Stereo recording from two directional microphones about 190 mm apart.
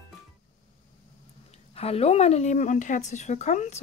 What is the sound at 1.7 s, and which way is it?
Speech, 30° left (ahead or behind).